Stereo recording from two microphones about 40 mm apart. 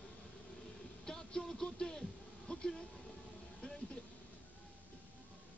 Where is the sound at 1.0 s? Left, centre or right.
Centre.